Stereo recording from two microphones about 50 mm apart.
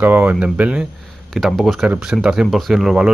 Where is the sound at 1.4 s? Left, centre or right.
Centre.